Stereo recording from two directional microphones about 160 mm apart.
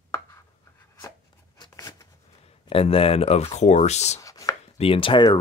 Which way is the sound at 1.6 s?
20° left (ahead or behind).